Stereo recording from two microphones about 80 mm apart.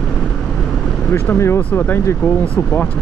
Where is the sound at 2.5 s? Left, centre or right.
Centre.